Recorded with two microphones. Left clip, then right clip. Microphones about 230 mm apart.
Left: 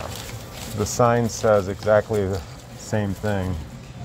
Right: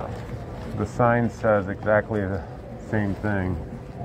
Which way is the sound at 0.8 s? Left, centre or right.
Left.